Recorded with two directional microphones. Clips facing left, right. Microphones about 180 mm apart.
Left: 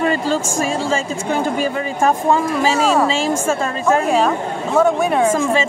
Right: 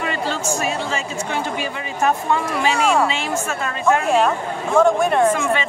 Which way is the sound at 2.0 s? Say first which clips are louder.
Left 3 dB; 40° left (ahead or behind).